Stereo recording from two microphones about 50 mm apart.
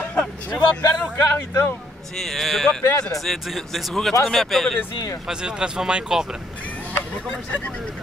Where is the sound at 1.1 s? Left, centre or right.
Left.